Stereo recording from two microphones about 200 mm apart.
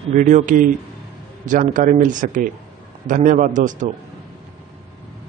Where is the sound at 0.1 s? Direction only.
40° right (ahead or behind).